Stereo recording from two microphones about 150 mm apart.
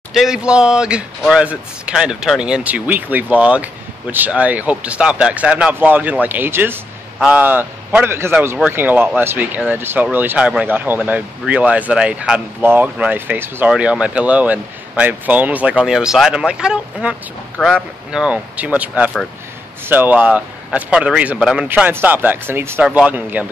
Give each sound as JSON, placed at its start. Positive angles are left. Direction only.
{"t": 0.1, "sound": "speech", "side_deg": -5}